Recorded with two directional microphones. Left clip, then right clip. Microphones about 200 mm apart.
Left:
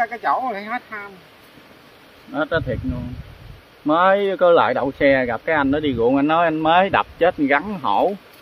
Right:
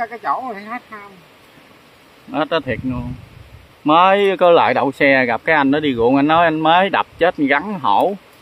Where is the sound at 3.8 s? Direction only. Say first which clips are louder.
Right 4 dB; 25° right (ahead or behind).